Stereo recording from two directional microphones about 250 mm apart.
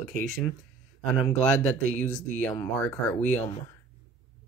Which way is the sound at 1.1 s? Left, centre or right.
Centre.